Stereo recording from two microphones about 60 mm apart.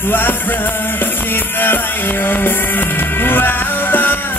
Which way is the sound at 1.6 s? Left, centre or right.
Left.